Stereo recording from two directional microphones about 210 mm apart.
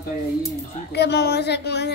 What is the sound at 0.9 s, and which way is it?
Speech, 55° left (ahead or behind).